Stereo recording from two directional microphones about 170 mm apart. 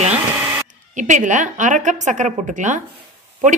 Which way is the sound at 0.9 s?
45° right (ahead or behind).